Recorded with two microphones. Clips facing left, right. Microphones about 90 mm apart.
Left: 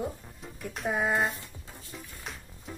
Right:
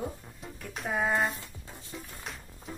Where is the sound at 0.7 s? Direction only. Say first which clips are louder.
Left 2 dB; centre (ahead or behind).